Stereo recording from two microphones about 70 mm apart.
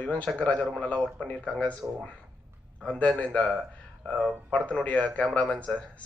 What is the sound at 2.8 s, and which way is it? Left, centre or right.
A man's voice, centre.